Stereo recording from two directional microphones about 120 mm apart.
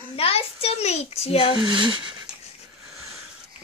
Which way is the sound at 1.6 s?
40° right (ahead or behind).